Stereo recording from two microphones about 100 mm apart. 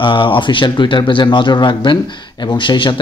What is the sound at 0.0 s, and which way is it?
Speech, 55° left (ahead or behind).